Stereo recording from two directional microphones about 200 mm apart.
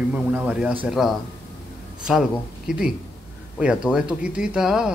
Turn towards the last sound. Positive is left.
turn(degrees=-5)  # may be behind; listen again after turning